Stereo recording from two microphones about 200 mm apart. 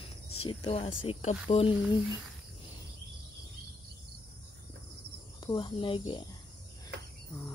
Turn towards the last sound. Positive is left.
turn(degrees=25)  # may be behind; listen again after turning